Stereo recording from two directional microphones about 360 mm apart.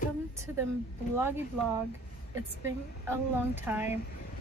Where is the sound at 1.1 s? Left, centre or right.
Centre.